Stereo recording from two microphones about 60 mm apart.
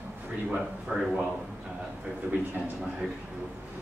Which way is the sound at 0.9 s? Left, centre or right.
Centre.